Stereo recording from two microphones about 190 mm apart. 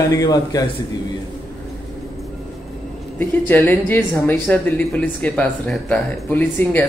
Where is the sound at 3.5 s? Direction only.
10° left (ahead or behind).